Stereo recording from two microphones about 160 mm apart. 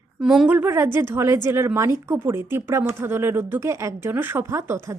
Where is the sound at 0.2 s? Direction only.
5° right (ahead or behind).